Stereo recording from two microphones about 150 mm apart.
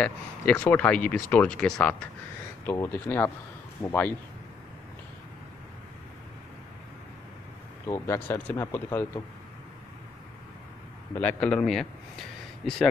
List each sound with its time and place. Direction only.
0.0 s speech: 10° left (ahead or behind)
7.8 s speech: 20° left (ahead or behind)
11.1 s a man's voice: 10° left (ahead or behind)